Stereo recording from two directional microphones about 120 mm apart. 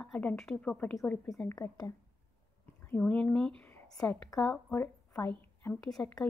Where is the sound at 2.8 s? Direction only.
10° left (ahead or behind).